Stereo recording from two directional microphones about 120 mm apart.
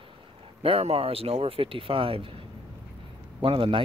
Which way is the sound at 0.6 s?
55° right (ahead or behind).